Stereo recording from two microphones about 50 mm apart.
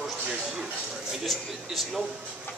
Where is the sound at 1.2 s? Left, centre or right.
Centre.